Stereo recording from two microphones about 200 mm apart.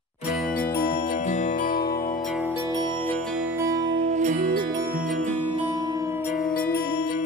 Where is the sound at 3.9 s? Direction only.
35° right (ahead or behind).